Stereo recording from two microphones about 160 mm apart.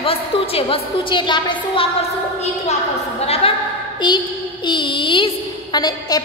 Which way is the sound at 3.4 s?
35° left (ahead or behind).